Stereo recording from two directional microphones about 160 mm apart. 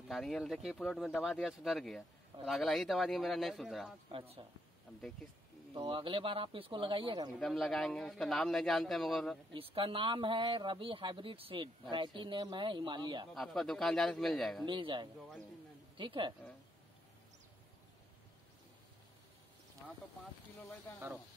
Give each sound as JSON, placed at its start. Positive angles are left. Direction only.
{"t": 0.1, "sound": "a man's voice", "side_deg": 0}
{"t": 4.1, "sound": "speech", "side_deg": -35}
{"t": 5.8, "sound": "speech", "side_deg": -30}
{"t": 7.3, "sound": "a man's voice", "side_deg": 0}
{"t": 9.5, "sound": "speech", "side_deg": -35}
{"t": 13.3, "sound": "a man's voice", "side_deg": 0}
{"t": 14.7, "sound": "speech", "side_deg": -30}
{"t": 15.1, "sound": "a man's voice", "side_deg": 5}
{"t": 16.0, "sound": "speech", "side_deg": -30}